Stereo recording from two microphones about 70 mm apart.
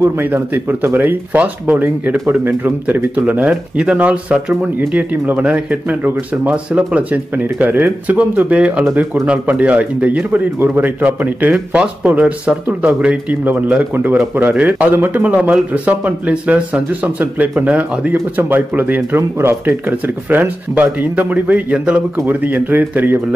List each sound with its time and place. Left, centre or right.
0.0 s speech: right